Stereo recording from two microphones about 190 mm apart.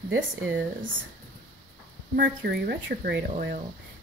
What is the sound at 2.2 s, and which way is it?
Speech, 60° right (ahead or behind).